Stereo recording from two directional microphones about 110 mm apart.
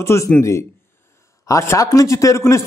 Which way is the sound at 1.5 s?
30° left (ahead or behind).